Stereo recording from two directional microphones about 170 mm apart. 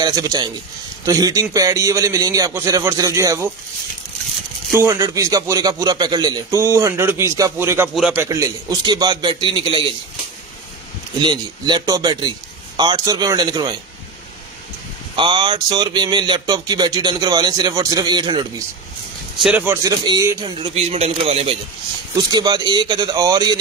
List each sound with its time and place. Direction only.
0.0 s speech: 20° right (ahead or behind)
4.7 s speech: 15° right (ahead or behind)
7.9 s a man's voice: 5° right (ahead or behind)
8.2 s speech: 20° right (ahead or behind)
11.1 s speech: 25° right (ahead or behind)
15.1 s speech: 30° right (ahead or behind)
19.4 s speech: 10° right (ahead or behind)
19.8 s a man's voice: 20° right (ahead or behind); by 21.5 s 35° right (ahead or behind)
22.1 s speech: 25° right (ahead or behind)